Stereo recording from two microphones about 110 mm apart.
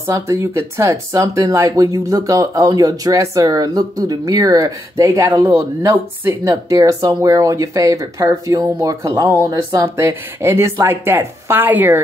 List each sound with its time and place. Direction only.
0.0 s speech: 30° right (ahead or behind)